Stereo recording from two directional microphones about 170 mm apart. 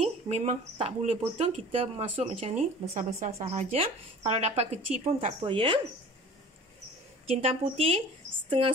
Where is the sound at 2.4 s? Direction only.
40° right (ahead or behind).